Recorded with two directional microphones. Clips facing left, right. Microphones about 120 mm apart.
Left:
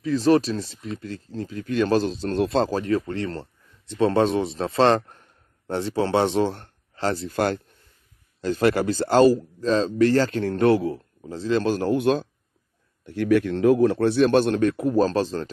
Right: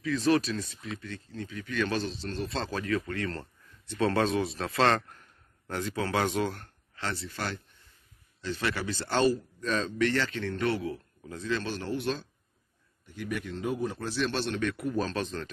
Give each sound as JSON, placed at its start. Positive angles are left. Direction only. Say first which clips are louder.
{"t": 0.0, "sound": "speech", "louder": "left 7 dB", "side_deg": 35}
{"t": 13.0, "sound": "speech", "louder": "left 15 dB", "side_deg": 75}